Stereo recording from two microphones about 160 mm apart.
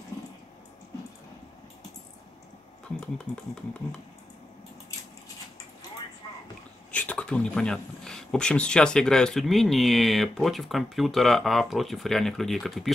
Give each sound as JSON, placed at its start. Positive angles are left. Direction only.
{"t": 6.9, "sound": "speech", "side_deg": 10}